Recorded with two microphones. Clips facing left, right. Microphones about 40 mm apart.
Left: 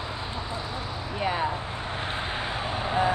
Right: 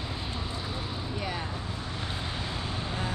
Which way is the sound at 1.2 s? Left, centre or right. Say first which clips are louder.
Left 10 dB; left.